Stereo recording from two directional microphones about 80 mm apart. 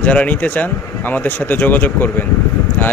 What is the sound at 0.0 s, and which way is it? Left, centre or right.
Speech, centre.